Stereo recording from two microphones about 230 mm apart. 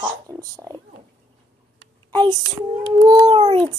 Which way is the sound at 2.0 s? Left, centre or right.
Centre.